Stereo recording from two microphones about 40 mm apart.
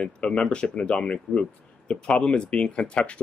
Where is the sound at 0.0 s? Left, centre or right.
Left.